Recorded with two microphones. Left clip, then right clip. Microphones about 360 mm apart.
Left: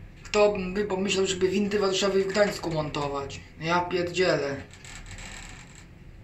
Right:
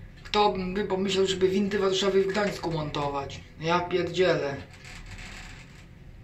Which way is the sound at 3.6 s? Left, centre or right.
Centre.